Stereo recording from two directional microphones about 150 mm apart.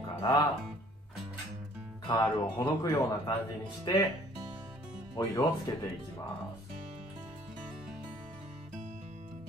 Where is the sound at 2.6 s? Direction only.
20° left (ahead or behind).